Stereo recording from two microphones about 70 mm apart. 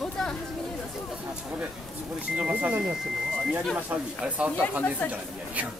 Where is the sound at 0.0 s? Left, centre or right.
Centre.